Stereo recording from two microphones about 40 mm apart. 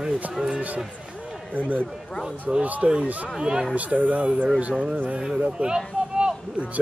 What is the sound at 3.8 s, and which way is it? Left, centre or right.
Speech, right.